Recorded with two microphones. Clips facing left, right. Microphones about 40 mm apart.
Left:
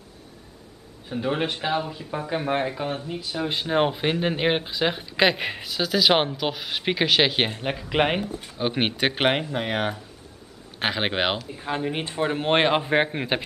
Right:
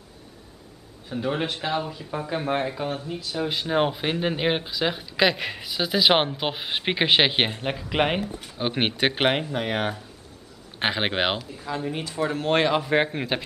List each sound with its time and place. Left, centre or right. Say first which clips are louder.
1.0 s speech: left 1 dB; centre
5.7 s speech: even; centre
6.3 s speech: even; right
7.4 s speech: even; centre
8.5 s speech: even; centre
11.8 s speech: left 1 dB; left
12.9 s speech: left 1 dB; centre